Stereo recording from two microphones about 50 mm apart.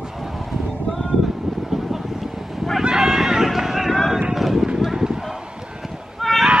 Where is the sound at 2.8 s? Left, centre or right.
Centre.